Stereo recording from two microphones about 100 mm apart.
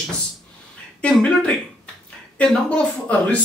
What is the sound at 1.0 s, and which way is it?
Speech, 10° left (ahead or behind).